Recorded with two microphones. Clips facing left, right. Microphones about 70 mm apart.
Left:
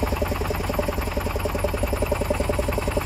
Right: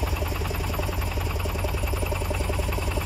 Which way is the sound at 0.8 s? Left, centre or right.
Left.